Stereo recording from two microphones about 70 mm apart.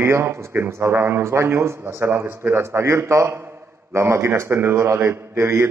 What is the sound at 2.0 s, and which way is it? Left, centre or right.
A man's voice, right.